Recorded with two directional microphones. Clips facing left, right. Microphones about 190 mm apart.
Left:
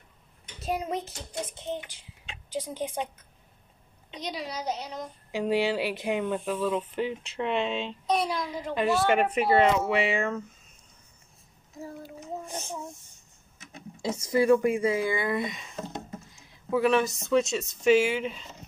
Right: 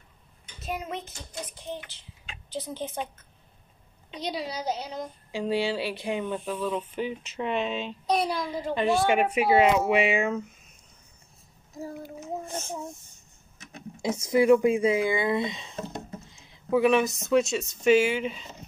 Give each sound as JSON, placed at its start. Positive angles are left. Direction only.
{"t": 0.6, "sound": "a child's voice", "side_deg": 35}
{"t": 1.4, "sound": "speech", "side_deg": 25}
{"t": 4.2, "sound": "a woman's voice", "side_deg": -30}
{"t": 5.3, "sound": "speech", "side_deg": 10}
{"t": 8.1, "sound": "a woman's voice", "side_deg": -35}
{"t": 8.7, "sound": "speech", "side_deg": 0}
{"t": 9.1, "sound": "speech", "side_deg": -10}
{"t": 12.2, "sound": "a sound", "side_deg": 15}
{"t": 14.0, "sound": "speech", "side_deg": -20}
{"t": 16.3, "sound": "a sound", "side_deg": -20}
{"t": 17.4, "sound": "speech", "side_deg": 0}